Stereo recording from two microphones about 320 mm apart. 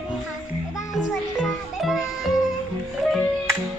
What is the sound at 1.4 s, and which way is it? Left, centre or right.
Music, centre.